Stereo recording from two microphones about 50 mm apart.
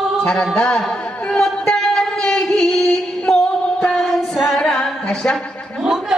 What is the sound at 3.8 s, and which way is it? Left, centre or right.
Female singing, centre.